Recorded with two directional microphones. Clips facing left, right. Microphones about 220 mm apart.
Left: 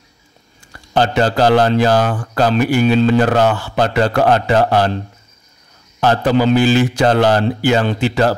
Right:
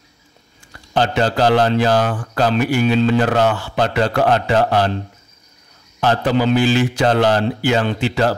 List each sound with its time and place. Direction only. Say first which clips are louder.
0.9 s a man's voice: left 2 dB; 45° left (ahead or behind)
5.9 s a man's voice: left 3 dB; 40° left (ahead or behind)